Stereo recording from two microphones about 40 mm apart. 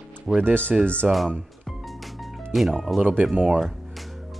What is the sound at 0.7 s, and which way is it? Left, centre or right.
Speech, right.